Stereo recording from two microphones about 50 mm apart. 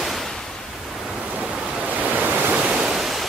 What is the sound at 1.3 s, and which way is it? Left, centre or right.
Waves, centre.